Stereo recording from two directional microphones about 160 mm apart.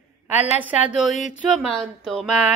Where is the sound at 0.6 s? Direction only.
5° right (ahead or behind).